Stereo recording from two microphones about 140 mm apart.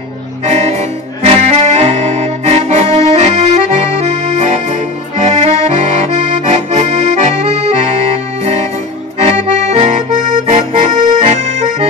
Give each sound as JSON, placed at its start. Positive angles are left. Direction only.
{"t": 0.5, "sound": "music", "side_deg": -55}
{"t": 1.2, "sound": "accordion", "side_deg": -50}
{"t": 9.2, "sound": "accordion", "side_deg": -50}